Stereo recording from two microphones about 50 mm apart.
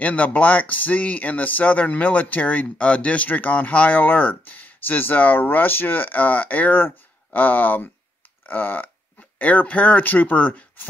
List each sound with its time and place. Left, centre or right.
0.0 s speech: left